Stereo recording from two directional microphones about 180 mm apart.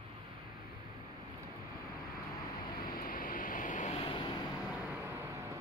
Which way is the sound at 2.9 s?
50° left (ahead or behind).